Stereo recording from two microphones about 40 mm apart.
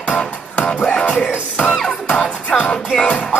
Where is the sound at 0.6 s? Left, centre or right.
Left.